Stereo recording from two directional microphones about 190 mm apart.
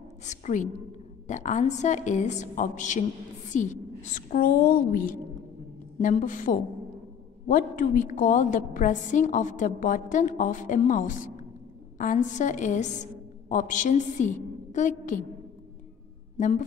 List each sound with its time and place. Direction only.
0.2 s a woman's voice: 40° left (ahead or behind)
16.3 s speech: 40° left (ahead or behind)